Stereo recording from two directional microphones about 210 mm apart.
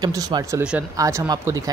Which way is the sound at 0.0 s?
20° right (ahead or behind).